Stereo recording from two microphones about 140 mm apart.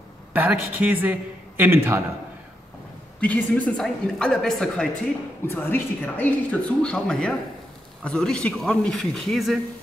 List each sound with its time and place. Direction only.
0.3 s a woman's voice: 15° right (ahead or behind)
3.2 s a woman's voice: 10° left (ahead or behind)
5.5 s a woman's voice: 15° left (ahead or behind)